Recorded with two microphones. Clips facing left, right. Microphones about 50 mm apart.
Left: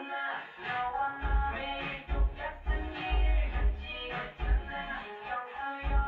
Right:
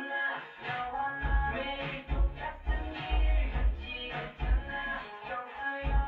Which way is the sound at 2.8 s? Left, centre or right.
Centre.